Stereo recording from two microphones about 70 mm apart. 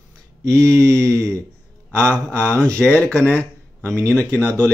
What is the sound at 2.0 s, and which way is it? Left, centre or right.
Speech, centre.